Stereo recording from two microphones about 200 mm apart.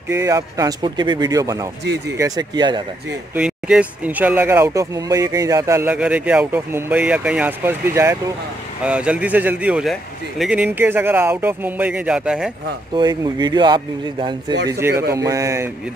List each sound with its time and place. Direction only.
0.1 s speech: 15° right (ahead or behind)
3.3 s speech: 5° right (ahead or behind)
12.9 s speech: 20° right (ahead or behind)
14.7 s speech: 10° right (ahead or behind)